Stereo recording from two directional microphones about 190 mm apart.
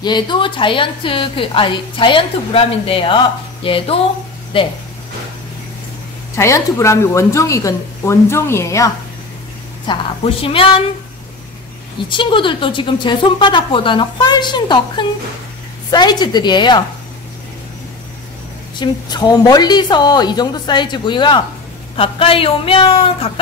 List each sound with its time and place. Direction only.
0.0 s a woman's voice: 25° left (ahead or behind)
6.3 s a woman's voice: 15° left (ahead or behind)
12.1 s a woman's voice: 25° left (ahead or behind)
18.8 s a woman's voice: 20° left (ahead or behind)